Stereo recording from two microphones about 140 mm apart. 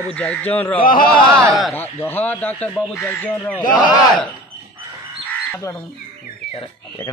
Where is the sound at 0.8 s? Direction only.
90° left.